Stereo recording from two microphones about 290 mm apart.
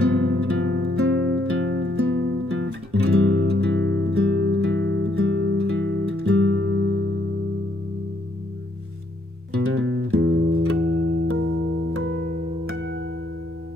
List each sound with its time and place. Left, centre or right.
0.0 s music: right
9.6 s music: right